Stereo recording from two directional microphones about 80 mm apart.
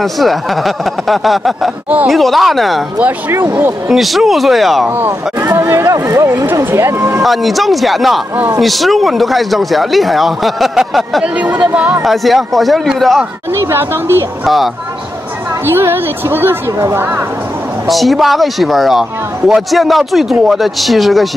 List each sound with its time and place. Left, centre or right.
0.0 s speech: centre
3.0 s a woman's voice: right
3.9 s speech: centre
4.8 s a woman's voice: right
7.0 s speech: right
7.2 s speech: centre
11.3 s a woman's voice: centre
12.0 s speech: centre
13.7 s speech: right
14.4 s speech: centre
15.6 s a woman's voice: right
17.8 s speech: centre